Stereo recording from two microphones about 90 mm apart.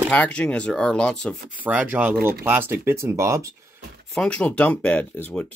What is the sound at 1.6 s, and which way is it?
Speech, 15° right (ahead or behind).